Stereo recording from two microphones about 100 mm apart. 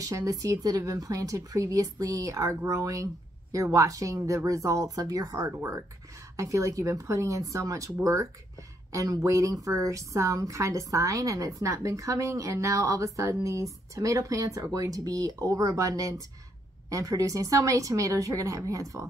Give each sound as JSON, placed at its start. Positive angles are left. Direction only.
{"t": 0.0, "sound": "a woman's voice", "side_deg": -35}